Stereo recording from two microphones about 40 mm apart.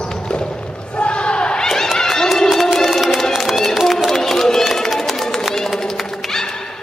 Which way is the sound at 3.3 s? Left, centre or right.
Centre.